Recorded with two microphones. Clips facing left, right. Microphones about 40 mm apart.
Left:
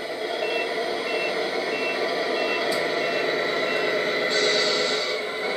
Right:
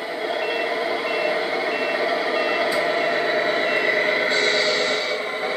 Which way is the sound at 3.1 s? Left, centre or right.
Right.